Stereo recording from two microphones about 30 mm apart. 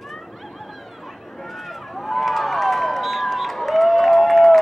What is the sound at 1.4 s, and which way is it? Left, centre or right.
Run, centre.